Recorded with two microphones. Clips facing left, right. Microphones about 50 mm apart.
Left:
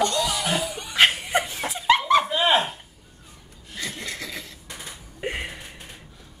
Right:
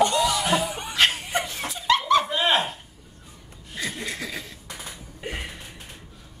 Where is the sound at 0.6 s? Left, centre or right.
Right.